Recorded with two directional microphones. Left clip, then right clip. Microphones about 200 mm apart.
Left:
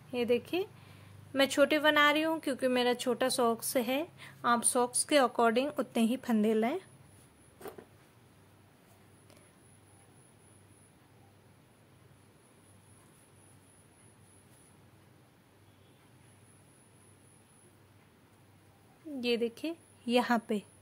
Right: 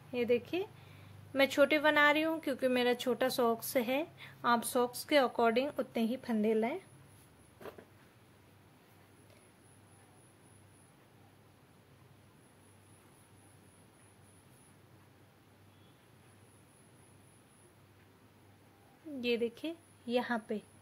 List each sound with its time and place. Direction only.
0.1 s a woman's voice: 10° left (ahead or behind)
19.2 s a woman's voice: 15° left (ahead or behind)
20.1 s a woman's voice: 30° left (ahead or behind)